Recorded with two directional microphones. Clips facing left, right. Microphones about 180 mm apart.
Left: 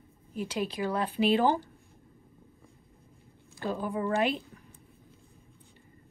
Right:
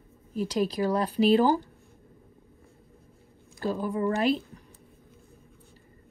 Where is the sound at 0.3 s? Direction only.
35° right (ahead or behind).